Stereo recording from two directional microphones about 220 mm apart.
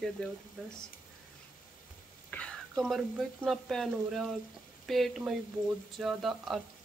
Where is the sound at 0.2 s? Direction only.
5° left (ahead or behind).